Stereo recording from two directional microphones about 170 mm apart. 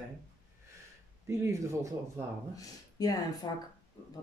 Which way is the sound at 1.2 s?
15° right (ahead or behind).